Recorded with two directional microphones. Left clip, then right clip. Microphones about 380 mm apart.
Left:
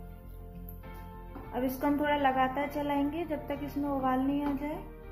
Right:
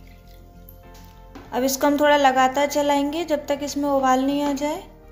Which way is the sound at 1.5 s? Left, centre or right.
Right.